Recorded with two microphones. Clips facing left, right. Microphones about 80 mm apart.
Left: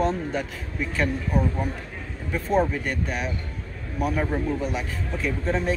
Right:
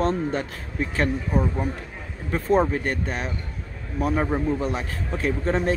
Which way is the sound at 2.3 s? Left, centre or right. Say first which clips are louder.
Right 2 dB; right.